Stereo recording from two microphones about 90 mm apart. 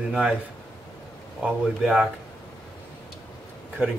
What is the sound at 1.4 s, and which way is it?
Speech, 5° right (ahead or behind).